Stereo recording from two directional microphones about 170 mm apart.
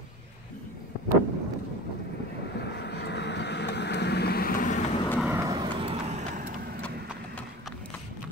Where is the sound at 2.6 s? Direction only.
80° left; by 4.8 s 50° left (ahead or behind).